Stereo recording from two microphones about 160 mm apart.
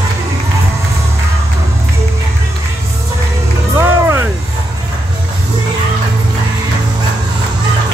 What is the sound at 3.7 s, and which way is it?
Music, 15° right (ahead or behind).